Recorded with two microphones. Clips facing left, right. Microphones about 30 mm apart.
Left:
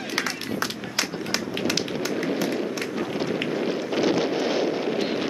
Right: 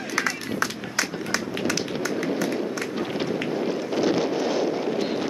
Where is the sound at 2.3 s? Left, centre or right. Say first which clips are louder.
Even; centre.